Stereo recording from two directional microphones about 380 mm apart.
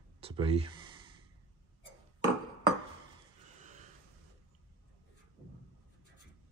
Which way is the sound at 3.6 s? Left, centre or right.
Centre.